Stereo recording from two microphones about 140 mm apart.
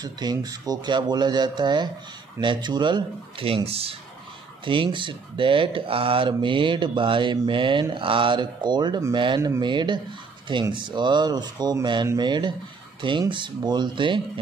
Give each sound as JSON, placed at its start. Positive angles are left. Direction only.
{"t": 0.0, "sound": "speech", "side_deg": -30}